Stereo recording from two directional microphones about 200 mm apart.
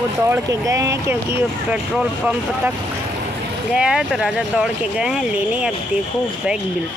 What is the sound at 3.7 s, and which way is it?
Speech, 5° right (ahead or behind).